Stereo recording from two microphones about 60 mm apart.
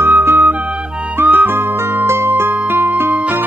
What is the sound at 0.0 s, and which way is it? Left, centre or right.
Music, right.